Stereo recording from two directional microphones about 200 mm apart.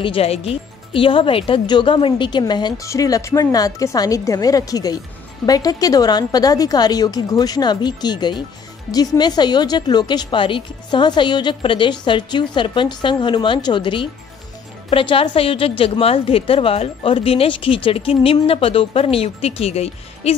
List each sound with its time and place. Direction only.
0.0 s a woman's voice: 30° left (ahead or behind)